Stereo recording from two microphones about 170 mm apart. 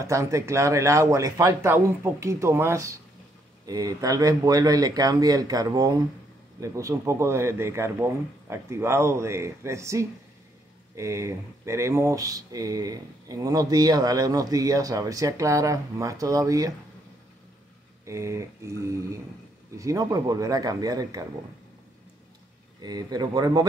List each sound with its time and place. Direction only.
0.0 s a man's voice: 15° right (ahead or behind)
18.0 s a man's voice: 15° right (ahead or behind)
22.8 s speech: 25° right (ahead or behind)